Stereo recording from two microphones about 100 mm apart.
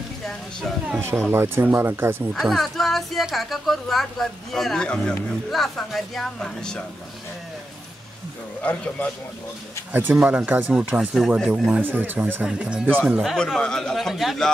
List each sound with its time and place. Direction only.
0.9 s speech: 25° right (ahead or behind)
2.3 s speech: centre (ahead or behind)
9.9 s speech: 15° right (ahead or behind)
11.8 s speech: 20° right (ahead or behind)
13.2 s speech: centre (ahead or behind)